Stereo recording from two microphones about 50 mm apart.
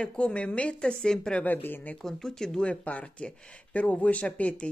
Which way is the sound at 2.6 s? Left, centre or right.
Left.